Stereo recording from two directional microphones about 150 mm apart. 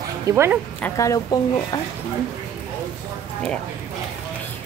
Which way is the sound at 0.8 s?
20° left (ahead or behind).